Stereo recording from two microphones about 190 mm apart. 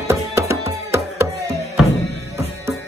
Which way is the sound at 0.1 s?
15° right (ahead or behind).